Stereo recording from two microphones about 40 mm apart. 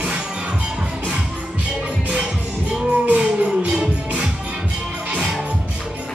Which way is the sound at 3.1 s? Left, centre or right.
Right.